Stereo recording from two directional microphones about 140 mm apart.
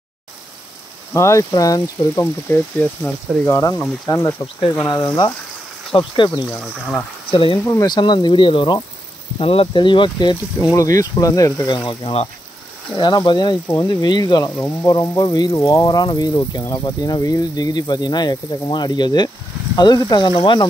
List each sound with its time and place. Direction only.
1.1 s speech: 20° left (ahead or behind)
6.5 s speech: 10° left (ahead or behind)
7.2 s speech: 35° left (ahead or behind)
7.6 s speech: 25° left (ahead or behind)
10.6 s speech: 25° left (ahead or behind)
11.9 s speech: 40° left (ahead or behind)
12.9 s speech: 30° left (ahead or behind)